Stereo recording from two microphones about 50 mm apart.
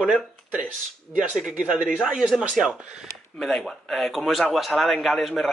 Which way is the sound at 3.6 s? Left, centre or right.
Centre.